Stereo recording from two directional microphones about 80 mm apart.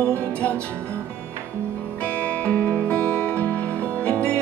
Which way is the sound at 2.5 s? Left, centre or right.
Centre.